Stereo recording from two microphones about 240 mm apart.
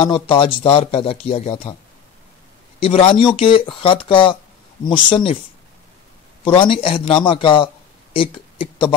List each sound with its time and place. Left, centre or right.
0.0 s speech: left
2.8 s speech: left
6.4 s speech: left